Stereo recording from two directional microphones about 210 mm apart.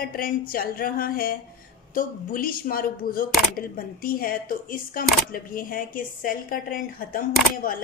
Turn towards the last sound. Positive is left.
turn(degrees=40)  # may be behind; listen again after turning